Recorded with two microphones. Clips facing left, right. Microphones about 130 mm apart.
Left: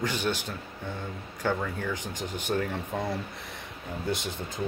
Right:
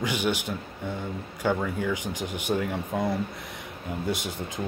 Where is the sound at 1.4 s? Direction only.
10° right (ahead or behind).